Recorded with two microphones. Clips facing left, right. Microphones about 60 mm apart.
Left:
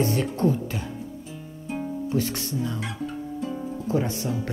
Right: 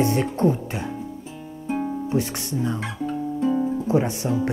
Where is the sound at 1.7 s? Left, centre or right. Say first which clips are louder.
Right 3 dB; right.